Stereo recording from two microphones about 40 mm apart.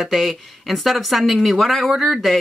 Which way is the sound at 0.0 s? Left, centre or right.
Centre.